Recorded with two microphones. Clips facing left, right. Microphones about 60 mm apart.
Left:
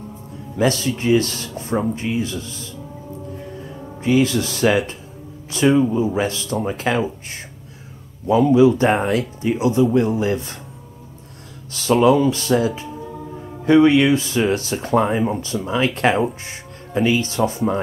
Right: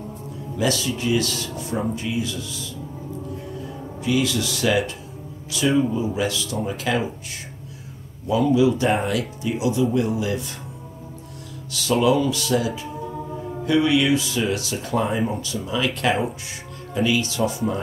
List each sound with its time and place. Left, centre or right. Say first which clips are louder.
0.6 s speech: left 4 dB; left
4.0 s a man's voice: left 5 dB; left
8.5 s speech: left 5 dB; left
11.7 s speech: left 4 dB; left